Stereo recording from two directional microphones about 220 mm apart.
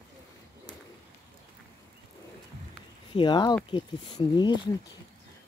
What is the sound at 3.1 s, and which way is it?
Speech, 20° left (ahead or behind).